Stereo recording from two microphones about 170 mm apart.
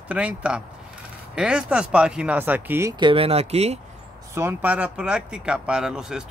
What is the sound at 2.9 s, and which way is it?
Speech, 30° right (ahead or behind).